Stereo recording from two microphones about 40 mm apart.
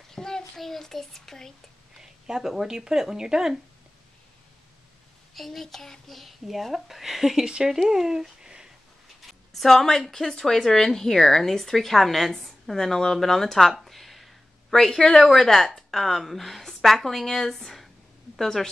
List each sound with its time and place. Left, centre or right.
0.1 s a sound: centre
0.6 s a child's voice: centre
2.2 s speech: centre
5.3 s a child's voice: centre
9.2 s speech: centre
13.8 s a sound: centre
14.7 s a child's voice: centre